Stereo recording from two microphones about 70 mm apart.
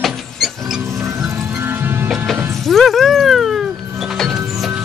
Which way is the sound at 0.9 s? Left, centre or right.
Right.